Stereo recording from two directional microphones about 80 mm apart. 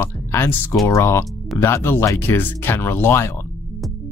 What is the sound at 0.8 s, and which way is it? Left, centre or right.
Speech, left.